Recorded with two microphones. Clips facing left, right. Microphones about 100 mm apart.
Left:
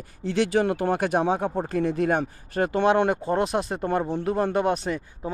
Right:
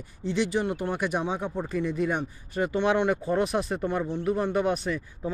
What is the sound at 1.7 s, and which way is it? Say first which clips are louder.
Speech: left 2 dB; 85° left.